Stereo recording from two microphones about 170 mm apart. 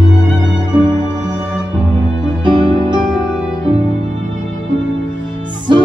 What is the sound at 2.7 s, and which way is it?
Music, 30° right (ahead or behind).